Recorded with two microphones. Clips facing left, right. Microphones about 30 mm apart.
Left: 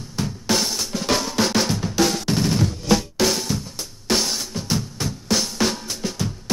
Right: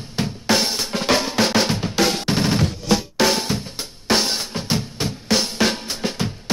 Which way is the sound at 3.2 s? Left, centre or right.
Right.